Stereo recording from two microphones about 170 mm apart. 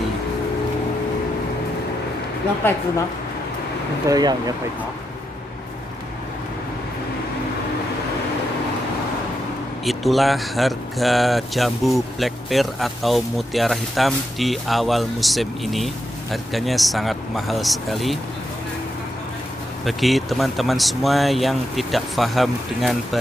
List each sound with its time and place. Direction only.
4.1 s speech: 25° right (ahead or behind)
9.8 s speech: centre (ahead or behind)
19.8 s speech: centre (ahead or behind)